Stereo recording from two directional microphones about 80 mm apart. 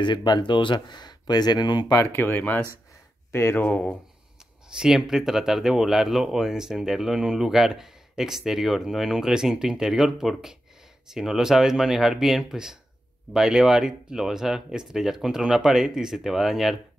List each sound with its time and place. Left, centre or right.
0.0 s speech: left
2.1 s speech: left
4.7 s speech: centre